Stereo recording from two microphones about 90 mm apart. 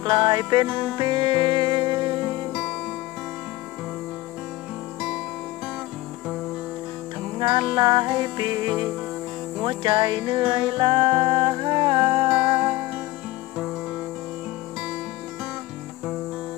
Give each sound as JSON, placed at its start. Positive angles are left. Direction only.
{"t": 0.0, "sound": "music", "side_deg": -60}
{"t": 2.5, "sound": "music", "side_deg": -5}
{"t": 7.3, "sound": "music", "side_deg": -60}
{"t": 9.7, "sound": "music", "side_deg": -65}
{"t": 12.3, "sound": "music", "side_deg": -15}